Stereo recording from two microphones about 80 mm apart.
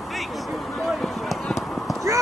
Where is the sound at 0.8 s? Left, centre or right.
Centre.